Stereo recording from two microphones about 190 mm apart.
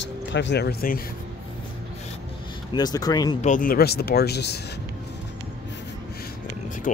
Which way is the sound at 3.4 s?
45° left (ahead or behind).